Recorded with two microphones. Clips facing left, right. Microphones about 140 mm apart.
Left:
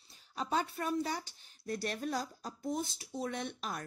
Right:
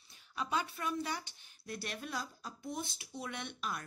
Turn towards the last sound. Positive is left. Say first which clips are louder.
# left 2 dB
turn(degrees=40)  # may be behind; listen again after turning